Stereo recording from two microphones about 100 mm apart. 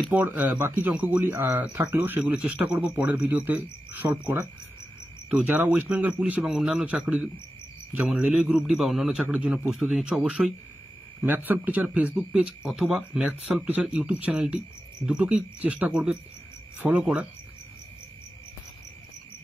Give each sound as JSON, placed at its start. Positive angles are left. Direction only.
{"t": 0.1, "sound": "speech", "side_deg": -15}